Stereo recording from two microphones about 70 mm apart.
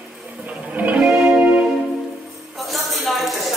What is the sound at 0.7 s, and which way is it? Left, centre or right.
Music, right.